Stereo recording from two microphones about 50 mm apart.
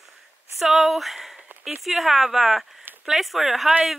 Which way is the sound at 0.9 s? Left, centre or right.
Centre.